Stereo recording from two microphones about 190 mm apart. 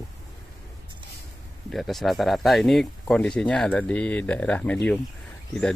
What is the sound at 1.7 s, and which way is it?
Speech, centre (ahead or behind).